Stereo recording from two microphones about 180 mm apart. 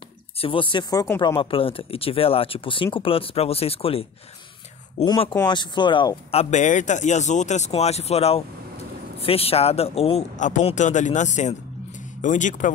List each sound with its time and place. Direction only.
0.4 s speech: 30° left (ahead or behind)
1.2 s speech: 30° left (ahead or behind)
5.0 s speech: 20° left (ahead or behind)
6.5 s speech: 45° left (ahead or behind)